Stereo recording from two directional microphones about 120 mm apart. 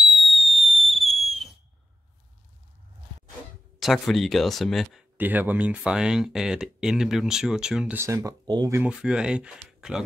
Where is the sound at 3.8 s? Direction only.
Centre (ahead or behind).